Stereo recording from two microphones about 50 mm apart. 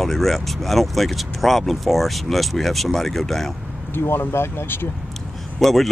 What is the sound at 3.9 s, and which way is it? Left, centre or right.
Speech, left.